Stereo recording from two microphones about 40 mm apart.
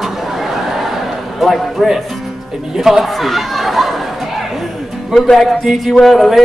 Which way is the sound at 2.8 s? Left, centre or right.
Centre.